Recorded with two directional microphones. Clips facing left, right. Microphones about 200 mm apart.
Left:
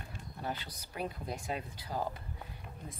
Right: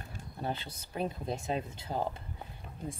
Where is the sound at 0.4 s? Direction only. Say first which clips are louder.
Right 3 dB; 25° right (ahead or behind).